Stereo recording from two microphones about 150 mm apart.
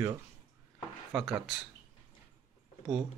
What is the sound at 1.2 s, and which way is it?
Speech, 5° right (ahead or behind).